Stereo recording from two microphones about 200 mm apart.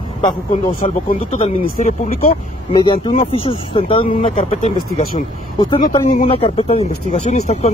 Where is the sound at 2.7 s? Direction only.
25° left (ahead or behind).